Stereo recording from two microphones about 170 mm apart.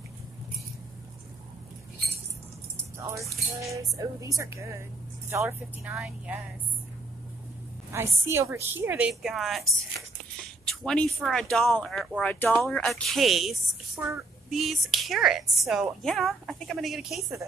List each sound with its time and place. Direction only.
3.0 s music: 20° right (ahead or behind)
3.6 s a woman's voice: 20° right (ahead or behind)
7.9 s a woman's voice: 15° right (ahead or behind)